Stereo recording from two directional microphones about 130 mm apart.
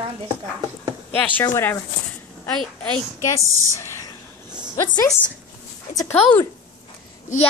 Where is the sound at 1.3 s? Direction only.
20° left (ahead or behind).